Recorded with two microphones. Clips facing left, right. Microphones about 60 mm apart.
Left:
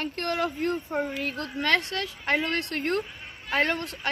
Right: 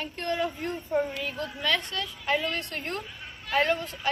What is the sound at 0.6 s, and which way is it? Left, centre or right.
A woman's voice, left.